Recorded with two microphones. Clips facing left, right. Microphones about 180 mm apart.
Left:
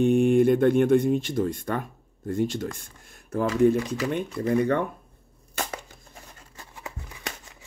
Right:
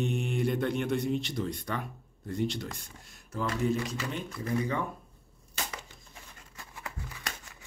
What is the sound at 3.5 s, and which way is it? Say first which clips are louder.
Speech: left 9 dB; 65° left (ahead or behind).